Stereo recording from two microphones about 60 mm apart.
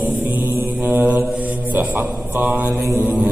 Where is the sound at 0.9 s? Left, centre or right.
Right.